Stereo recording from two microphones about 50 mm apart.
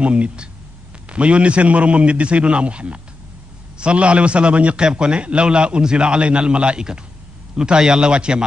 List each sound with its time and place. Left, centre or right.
0.0 s a man's voice: right